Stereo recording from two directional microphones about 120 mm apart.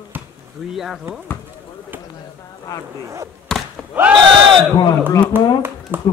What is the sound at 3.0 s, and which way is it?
Speech, 25° right (ahead or behind).